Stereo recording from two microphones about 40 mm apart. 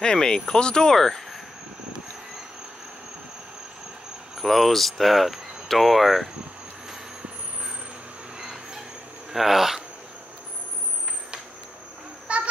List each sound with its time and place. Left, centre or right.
0.0 s speech: centre
0.8 s speech: centre
4.4 s speech: centre
8.4 s vehicle: centre
9.3 s speech: centre
12.3 s a sound: right